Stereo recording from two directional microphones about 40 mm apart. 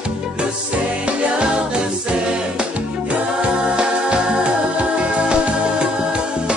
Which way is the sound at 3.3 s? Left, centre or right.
Right.